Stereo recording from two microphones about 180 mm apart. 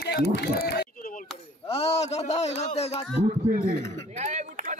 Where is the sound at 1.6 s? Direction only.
35° left (ahead or behind).